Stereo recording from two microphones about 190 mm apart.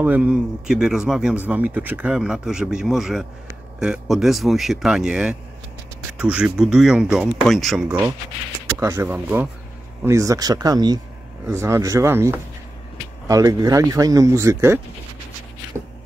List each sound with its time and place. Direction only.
0.0 s a man's voice: 10° right (ahead or behind)
8.7 s speech: 15° right (ahead or behind)